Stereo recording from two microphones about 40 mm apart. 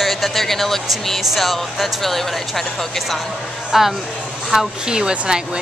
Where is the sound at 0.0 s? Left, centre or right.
Centre.